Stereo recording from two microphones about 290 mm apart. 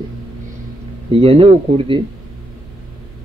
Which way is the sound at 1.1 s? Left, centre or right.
Centre.